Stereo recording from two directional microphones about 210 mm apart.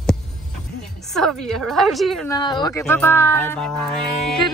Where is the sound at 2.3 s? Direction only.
20° left (ahead or behind); by 4.0 s 5° left (ahead or behind).